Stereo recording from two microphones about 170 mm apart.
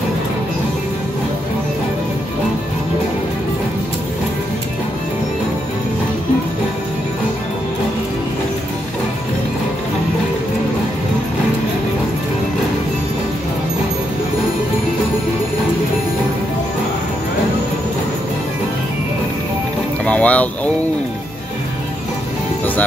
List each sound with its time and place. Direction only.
20.1 s vehicle: 10° left (ahead or behind)